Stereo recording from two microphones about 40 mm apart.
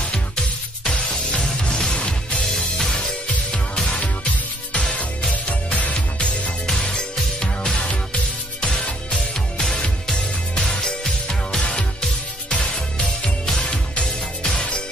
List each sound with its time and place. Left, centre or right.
0.0 s music: centre
4.0 s music: left
6.7 s music: centre
7.8 s music: left
12.5 s music: left
13.0 s music: centre
13.6 s music: left